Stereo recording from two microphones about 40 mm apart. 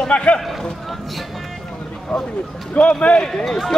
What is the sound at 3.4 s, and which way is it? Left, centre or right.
Speech, centre.